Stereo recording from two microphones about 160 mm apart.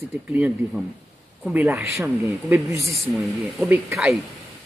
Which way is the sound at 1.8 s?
20° right (ahead or behind).